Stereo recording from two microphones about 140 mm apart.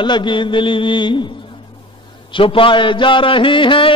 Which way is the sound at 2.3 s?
40° left (ahead or behind).